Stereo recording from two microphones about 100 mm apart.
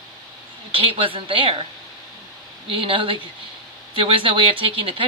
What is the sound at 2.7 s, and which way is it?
Speech, 60° right (ahead or behind).